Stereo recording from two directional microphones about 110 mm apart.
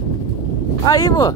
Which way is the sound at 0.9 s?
35° left (ahead or behind).